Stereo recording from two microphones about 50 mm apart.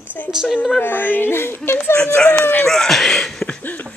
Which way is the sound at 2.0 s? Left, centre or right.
Centre.